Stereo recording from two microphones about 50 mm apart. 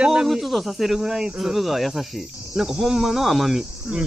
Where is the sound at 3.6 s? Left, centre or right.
Centre.